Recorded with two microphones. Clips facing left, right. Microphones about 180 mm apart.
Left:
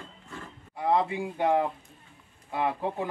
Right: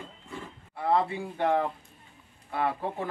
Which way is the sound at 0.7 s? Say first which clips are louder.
Left 1 dB; 15° left (ahead or behind).